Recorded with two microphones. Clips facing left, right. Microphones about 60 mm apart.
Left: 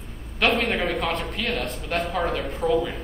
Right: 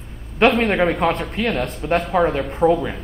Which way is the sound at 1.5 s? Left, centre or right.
Right.